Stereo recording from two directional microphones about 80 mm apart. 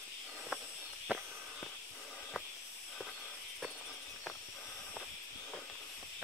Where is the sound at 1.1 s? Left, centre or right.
Centre.